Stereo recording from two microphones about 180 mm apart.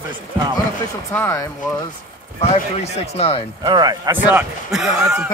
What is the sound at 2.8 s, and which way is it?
Speech, 35° left (ahead or behind).